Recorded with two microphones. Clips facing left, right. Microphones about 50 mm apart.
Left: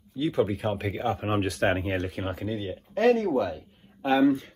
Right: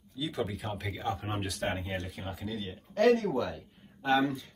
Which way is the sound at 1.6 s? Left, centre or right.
Left.